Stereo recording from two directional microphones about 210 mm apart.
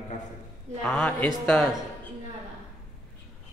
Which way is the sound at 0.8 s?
5° left (ahead or behind).